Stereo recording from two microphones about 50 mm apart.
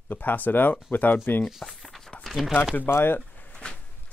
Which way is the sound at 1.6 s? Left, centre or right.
Centre.